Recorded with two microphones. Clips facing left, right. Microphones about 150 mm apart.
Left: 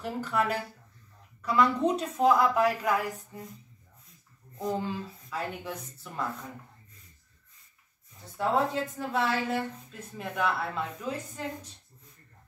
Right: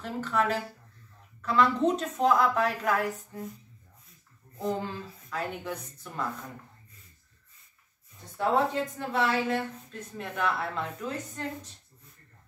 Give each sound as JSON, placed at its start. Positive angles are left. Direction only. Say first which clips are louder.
{"t": 0.0, "sound": "a woman's voice", "louder": "right 1 dB", "side_deg": 10}
{"t": 4.6, "sound": "speech", "louder": "even", "side_deg": 5}
{"t": 8.4, "sound": "speech", "louder": "right 1 dB", "side_deg": 0}